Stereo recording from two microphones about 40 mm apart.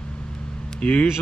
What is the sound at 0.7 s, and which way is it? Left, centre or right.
Speech, left.